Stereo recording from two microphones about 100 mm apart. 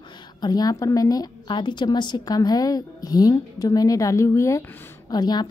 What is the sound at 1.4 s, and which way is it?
A woman's voice, 50° left (ahead or behind).